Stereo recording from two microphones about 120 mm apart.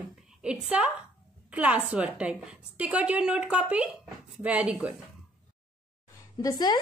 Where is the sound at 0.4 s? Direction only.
10° right (ahead or behind).